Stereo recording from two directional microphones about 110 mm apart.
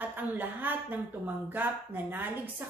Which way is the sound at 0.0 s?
15° right (ahead or behind).